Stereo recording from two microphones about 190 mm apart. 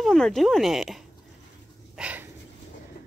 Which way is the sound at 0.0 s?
Centre (ahead or behind).